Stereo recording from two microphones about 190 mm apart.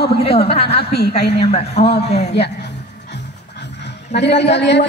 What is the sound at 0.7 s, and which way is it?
Speech, 60° left (ahead or behind).